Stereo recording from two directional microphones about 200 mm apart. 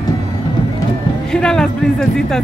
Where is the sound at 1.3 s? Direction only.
5° left (ahead or behind).